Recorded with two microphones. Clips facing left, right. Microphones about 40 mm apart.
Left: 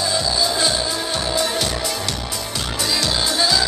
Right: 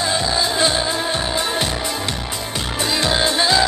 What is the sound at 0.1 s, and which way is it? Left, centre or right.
Music, right.